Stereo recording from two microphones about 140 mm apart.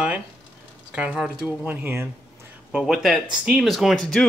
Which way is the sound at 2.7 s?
5° right (ahead or behind).